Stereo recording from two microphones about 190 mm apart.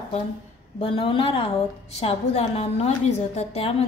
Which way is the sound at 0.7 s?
25° left (ahead or behind).